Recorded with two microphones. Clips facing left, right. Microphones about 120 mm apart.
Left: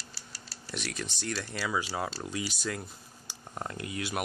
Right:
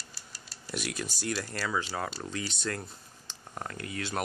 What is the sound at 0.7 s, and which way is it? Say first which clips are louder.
Speech: right 2 dB; 5° right (ahead or behind).